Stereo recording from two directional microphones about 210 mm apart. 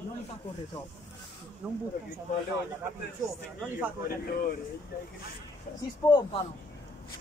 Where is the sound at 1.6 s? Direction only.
5° right (ahead or behind).